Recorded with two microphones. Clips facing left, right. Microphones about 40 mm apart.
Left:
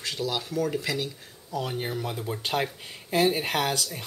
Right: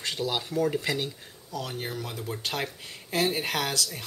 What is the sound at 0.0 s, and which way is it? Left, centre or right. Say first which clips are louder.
Speech: even; centre.